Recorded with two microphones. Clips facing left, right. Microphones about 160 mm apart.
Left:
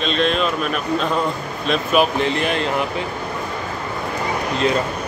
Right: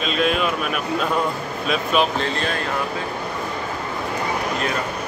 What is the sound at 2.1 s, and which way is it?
Speech, 15° left (ahead or behind).